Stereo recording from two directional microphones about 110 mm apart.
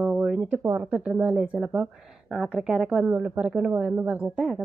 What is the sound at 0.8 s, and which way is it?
Speech, 10° right (ahead or behind).